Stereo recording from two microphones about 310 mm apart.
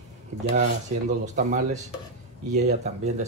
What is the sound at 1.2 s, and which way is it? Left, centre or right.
Speech, right.